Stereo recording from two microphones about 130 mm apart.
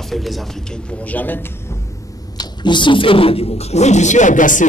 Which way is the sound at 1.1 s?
15° left (ahead or behind).